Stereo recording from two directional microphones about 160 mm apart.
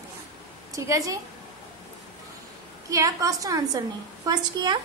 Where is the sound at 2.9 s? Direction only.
20° right (ahead or behind).